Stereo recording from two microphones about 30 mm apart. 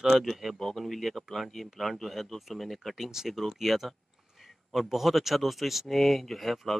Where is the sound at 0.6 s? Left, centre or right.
Centre.